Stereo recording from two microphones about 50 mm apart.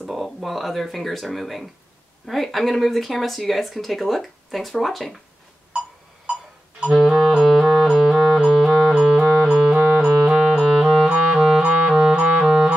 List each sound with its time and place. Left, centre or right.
0.0 s speech: centre
5.7 s a sound: centre
7.2 s music: centre
9.8 s music: right
10.0 s music: centre